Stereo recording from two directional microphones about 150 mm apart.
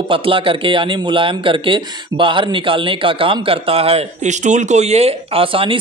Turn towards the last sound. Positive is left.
turn(degrees=-35)  # may be behind; listen again after turning